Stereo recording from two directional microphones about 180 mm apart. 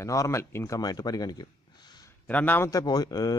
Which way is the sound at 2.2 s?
10° left (ahead or behind).